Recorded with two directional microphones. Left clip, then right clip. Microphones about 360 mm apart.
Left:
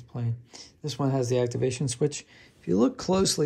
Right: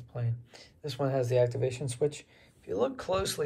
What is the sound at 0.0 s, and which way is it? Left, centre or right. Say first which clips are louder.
Speech: left 2 dB; centre.